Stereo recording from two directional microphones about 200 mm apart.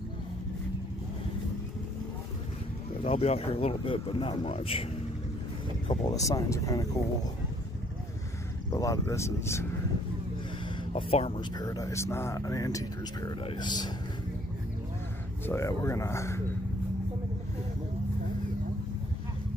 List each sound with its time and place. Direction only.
3.0 s speech: 30° left (ahead or behind)
5.9 s speech: 20° left (ahead or behind)
8.7 s speech: 15° left (ahead or behind)
10.8 s speech: 25° left (ahead or behind)
15.4 s speech: 15° left (ahead or behind)